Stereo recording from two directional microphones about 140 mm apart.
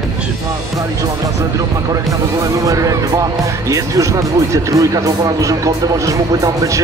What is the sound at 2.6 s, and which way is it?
Speech, 25° right (ahead or behind).